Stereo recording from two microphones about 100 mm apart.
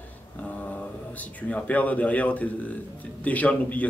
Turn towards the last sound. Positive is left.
turn(degrees=15)  # may be behind; listen again after turning